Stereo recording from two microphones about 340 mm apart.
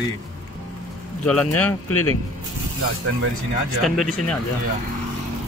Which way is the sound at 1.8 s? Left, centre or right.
Left.